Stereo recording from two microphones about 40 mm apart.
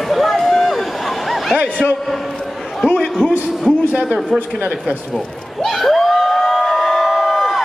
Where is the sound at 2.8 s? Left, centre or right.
Centre.